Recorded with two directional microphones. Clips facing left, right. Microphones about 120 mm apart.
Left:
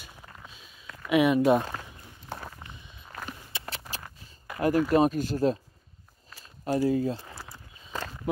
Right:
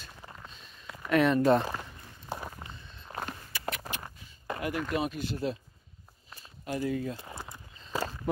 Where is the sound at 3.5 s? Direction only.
25° left (ahead or behind).